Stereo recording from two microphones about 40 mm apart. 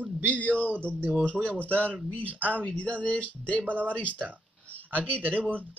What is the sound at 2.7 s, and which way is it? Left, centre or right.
Speech, left.